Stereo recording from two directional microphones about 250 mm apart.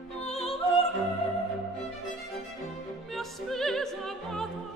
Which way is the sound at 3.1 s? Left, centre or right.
Centre.